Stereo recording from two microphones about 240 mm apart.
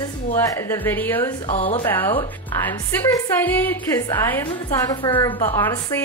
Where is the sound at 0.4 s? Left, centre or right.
Centre.